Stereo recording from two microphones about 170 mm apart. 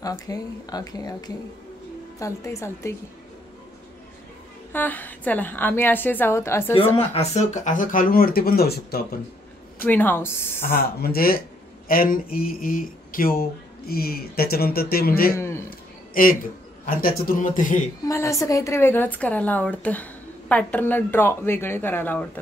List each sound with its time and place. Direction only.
0.0 s a woman's voice: 20° left (ahead or behind)
4.7 s a woman's voice: 10° left (ahead or behind)
7.0 s speech: 40° left (ahead or behind); by 9.2 s 65° left (ahead or behind)
9.8 s a woman's voice: 10° left (ahead or behind)
11.0 s speech: 60° left (ahead or behind)
15.3 s a man's voice: 15° left (ahead or behind)
16.1 s speech: 55° left (ahead or behind)
18.0 s a woman's voice: 20° left (ahead or behind)